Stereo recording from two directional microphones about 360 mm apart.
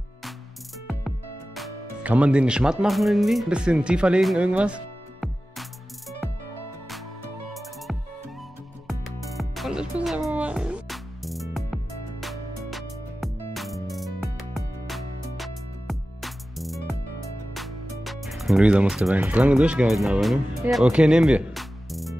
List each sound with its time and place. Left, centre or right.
0.8 s music: centre
7.5 s music: centre
17.6 s speech: centre